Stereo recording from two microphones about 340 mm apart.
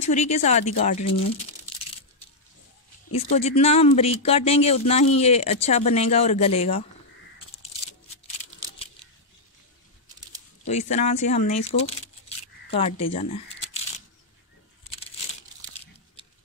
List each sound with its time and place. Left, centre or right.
0.0 s speech: centre
3.1 s speech: centre
10.7 s speech: centre
13.1 s camera: centre
15.7 s crunch: centre